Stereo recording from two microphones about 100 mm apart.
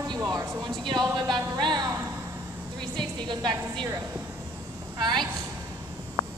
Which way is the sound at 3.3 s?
50° right (ahead or behind).